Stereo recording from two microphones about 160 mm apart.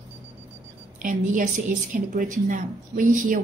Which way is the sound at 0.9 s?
55° right (ahead or behind).